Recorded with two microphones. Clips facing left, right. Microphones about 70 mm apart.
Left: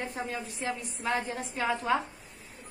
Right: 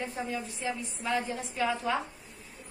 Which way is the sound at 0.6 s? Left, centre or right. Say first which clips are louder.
Left 4 dB; left.